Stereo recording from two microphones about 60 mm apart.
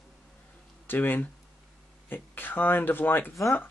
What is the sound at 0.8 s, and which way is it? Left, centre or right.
Speech, left.